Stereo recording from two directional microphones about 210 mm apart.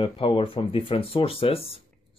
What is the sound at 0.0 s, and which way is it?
Speech, 25° left (ahead or behind).